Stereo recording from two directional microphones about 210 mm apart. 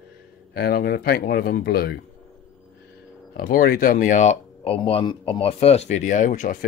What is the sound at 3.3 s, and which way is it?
Speech, 45° left (ahead or behind).